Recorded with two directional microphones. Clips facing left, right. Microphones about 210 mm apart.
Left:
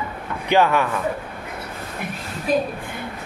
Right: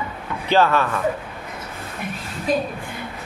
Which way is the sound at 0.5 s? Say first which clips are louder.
Even; 15° left (ahead or behind).